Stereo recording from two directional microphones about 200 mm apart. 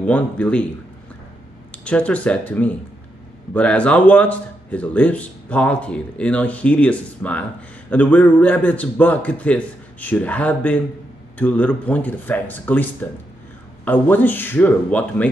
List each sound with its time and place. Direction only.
0.0 s speech: 5° left (ahead or behind)
1.7 s speech: 5° left (ahead or behind)